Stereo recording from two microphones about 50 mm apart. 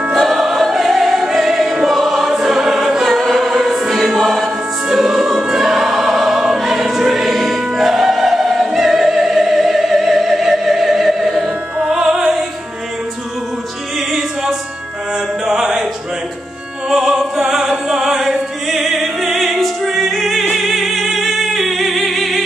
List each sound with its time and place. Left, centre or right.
0.1 s choir: centre
5.5 s music: centre
6.6 s choir: centre
11.4 s opera: centre
12.0 s music: centre
13.9 s music: centre
16.9 s music: centre
18.7 s opera: centre
20.5 s music: centre